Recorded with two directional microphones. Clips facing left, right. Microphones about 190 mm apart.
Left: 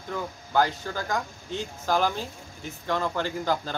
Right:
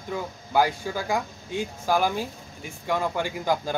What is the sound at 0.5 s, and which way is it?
Speech, 10° right (ahead or behind).